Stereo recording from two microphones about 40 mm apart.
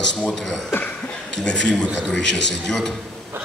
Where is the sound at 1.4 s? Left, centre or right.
Left.